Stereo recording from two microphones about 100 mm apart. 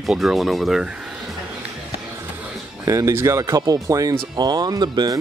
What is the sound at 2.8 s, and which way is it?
Speech, 30° right (ahead or behind).